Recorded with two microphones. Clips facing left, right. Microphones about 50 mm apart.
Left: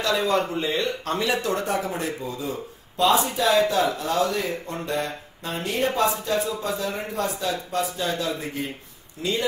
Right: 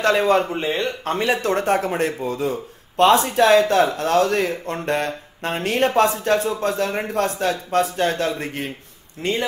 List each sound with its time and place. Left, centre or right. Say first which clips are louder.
0.0 s speech: right 5 dB; right